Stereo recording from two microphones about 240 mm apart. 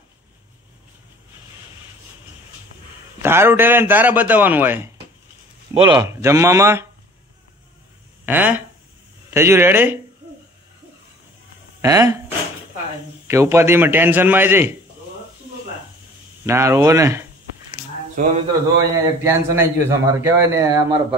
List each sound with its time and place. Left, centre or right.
3.2 s a man's voice: centre
8.3 s a man's voice: centre
11.8 s a man's voice: centre
13.3 s a man's voice: centre
16.4 s a man's voice: centre
17.8 s a sound: centre
18.1 s a man's voice: right
19.2 s a man's voice: centre